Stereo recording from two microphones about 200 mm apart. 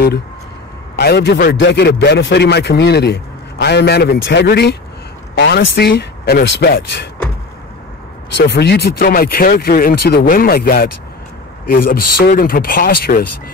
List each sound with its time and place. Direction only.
0.9 s a man's voice: 55° left (ahead or behind)
8.4 s speech: 55° left (ahead or behind)